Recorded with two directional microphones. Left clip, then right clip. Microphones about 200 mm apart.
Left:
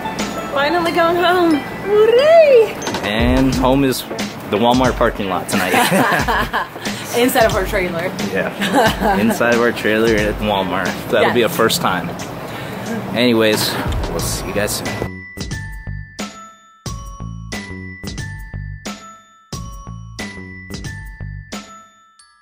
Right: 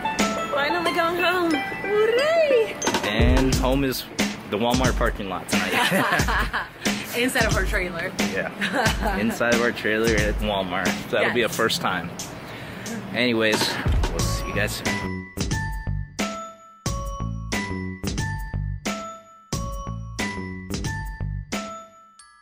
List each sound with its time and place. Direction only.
0.1 s speech: centre (ahead or behind)
6.2 s speech: 25° left (ahead or behind)
7.6 s speech: 10° left (ahead or behind)
9.2 s speech: 5° right (ahead or behind)
16.2 s music: centre (ahead or behind)
20.2 s music: centre (ahead or behind)